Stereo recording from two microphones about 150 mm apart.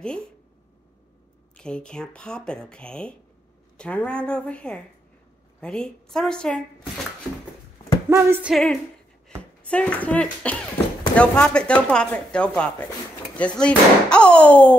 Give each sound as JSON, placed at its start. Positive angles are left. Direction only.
{"t": 1.6, "sound": "speech", "side_deg": 5}
{"t": 8.1, "sound": "music", "side_deg": -15}
{"t": 9.4, "sound": "speech", "side_deg": 10}